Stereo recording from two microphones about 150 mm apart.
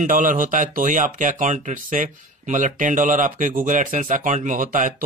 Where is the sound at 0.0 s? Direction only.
60° right (ahead or behind).